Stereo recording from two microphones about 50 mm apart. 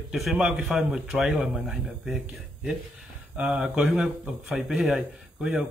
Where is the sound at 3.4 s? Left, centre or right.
Centre.